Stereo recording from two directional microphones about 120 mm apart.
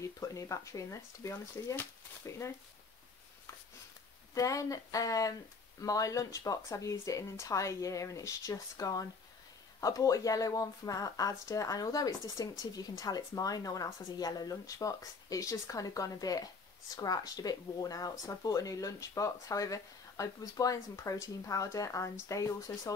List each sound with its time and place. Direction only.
0.0 s speech: 25° left (ahead or behind)
4.3 s speech: 30° left (ahead or behind)